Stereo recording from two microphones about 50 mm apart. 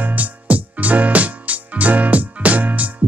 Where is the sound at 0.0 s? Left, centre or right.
Right.